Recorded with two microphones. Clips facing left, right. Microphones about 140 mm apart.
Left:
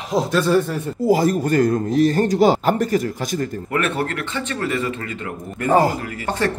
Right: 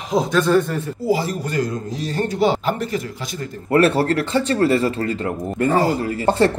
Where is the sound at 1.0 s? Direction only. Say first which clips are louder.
Left 5 dB; 45° left (ahead or behind).